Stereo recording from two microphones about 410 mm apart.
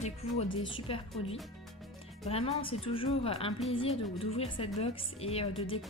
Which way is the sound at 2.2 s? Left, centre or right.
Centre.